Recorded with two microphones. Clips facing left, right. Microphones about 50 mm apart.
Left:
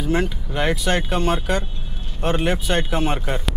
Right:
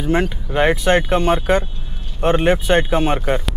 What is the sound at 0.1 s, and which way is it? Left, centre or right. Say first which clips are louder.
Speech: right 5 dB; right.